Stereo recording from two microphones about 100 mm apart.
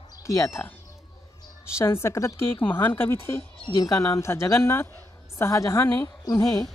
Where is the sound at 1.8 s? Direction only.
25° left (ahead or behind).